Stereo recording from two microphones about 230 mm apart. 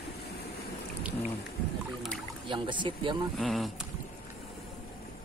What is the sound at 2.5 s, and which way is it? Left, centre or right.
Speech, right.